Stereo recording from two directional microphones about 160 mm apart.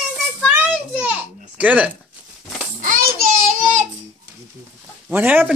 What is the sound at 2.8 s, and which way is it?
Child singing, 60° right (ahead or behind).